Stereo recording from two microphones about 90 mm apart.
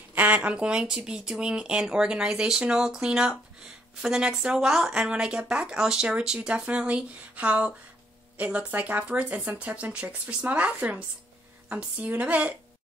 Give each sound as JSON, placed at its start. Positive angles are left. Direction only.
{"t": 0.1, "sound": "speech", "side_deg": -20}